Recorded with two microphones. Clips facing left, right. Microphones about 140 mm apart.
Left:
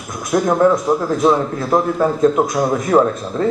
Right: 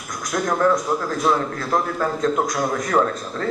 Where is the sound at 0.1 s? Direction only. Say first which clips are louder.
Left 7 dB; 25° left (ahead or behind).